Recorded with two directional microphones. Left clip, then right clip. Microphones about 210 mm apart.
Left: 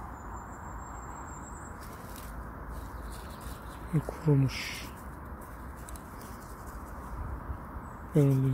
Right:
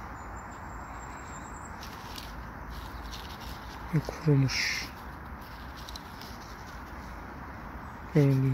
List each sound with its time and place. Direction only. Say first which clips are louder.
3.9 s speech: right 1 dB; centre (ahead or behind)
8.1 s speech: right 1 dB; 5° left (ahead or behind)